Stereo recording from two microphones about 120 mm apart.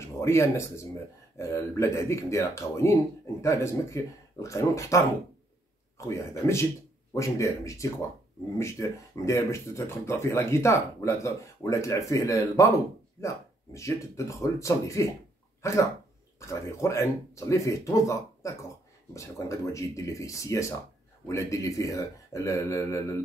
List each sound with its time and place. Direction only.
0.0 s speech: 25° left (ahead or behind)
13.7 s speech: 25° left (ahead or behind)